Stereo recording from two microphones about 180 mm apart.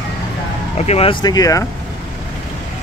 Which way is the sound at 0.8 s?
35° left (ahead or behind).